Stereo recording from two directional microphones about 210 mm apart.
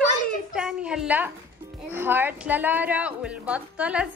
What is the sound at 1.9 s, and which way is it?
A woman's voice, 10° right (ahead or behind).